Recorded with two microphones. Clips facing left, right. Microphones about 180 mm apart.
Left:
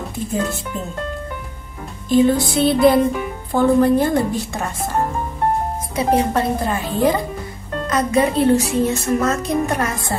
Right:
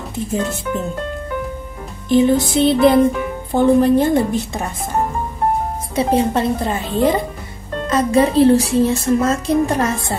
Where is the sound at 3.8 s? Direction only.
20° right (ahead or behind).